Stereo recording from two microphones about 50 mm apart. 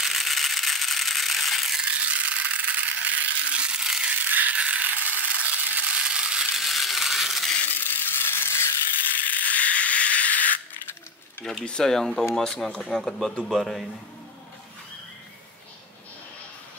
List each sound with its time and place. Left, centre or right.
0.0 s mechanisms: centre
1.9 s mechanisms: right
4.1 s rattle: right
4.6 s a sound: right
5.9 s mechanisms: centre
6.6 s a sound: centre
7.6 s ratchet: left
9.2 s a sound: left
11.6 s a man's voice: centre